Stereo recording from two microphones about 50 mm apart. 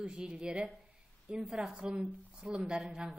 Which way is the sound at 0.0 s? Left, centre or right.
Centre.